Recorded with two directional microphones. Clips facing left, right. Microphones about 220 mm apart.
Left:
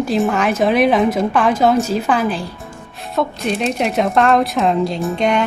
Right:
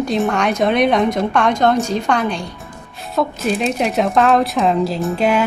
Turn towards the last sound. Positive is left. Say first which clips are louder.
# right 1 dB
turn(degrees=-5)  # may be behind; listen again after turning